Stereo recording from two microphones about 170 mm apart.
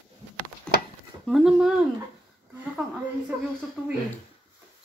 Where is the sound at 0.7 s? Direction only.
5° left (ahead or behind).